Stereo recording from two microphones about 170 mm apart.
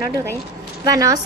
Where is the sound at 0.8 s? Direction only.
20° right (ahead or behind).